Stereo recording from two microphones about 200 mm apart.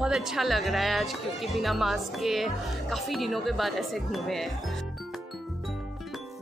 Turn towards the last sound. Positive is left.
turn(degrees=0)  # may be behind; listen again after turning